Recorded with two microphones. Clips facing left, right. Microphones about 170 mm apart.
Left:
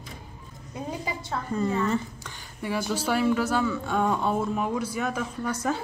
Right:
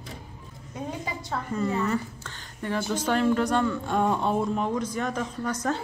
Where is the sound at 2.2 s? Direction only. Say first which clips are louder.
Even; 10° left (ahead or behind).